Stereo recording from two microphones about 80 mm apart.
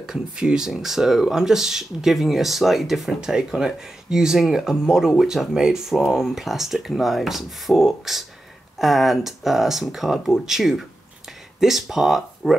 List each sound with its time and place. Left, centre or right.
0.0 s speech: centre